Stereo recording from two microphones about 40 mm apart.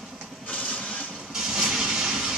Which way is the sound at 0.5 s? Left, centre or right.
Left.